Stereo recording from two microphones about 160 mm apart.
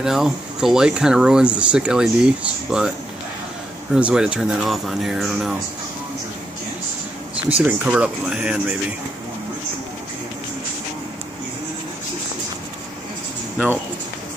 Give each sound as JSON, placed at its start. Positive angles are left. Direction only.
{"t": 0.0, "sound": "speech", "side_deg": -5}
{"t": 3.9, "sound": "speech", "side_deg": -5}
{"t": 7.6, "sound": "speech", "side_deg": -10}